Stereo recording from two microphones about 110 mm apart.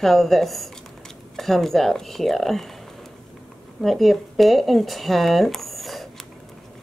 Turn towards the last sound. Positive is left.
turn(degrees=0)  # may be behind; listen again after turning